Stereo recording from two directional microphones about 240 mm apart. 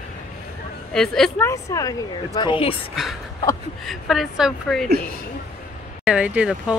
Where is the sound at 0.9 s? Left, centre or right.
Centre.